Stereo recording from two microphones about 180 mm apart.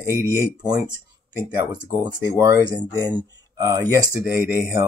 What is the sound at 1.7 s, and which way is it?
Speech, 20° right (ahead or behind).